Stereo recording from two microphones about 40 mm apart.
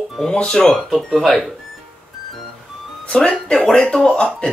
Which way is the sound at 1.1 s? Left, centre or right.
Centre.